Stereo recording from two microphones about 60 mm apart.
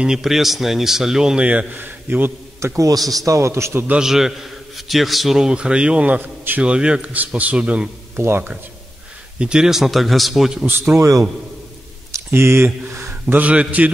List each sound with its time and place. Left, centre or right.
0.0 s a man's voice: centre
1.8 s a man's voice: right
2.6 s speech: right
2.9 s a man's voice: right
4.0 s a man's voice: centre; by 6.2 s right
6.2 s a man's voice: right
6.6 s a man's voice: centre
9.4 s speech: centre
11.0 s a man's voice: right
12.3 s speech: right
13.3 s a man's voice: right